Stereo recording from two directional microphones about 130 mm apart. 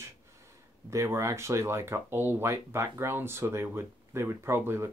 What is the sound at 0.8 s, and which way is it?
Speech, 20° right (ahead or behind).